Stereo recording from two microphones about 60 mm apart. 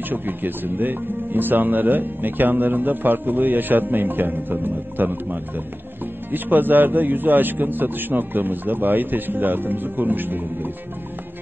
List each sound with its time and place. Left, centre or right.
0.1 s speech: right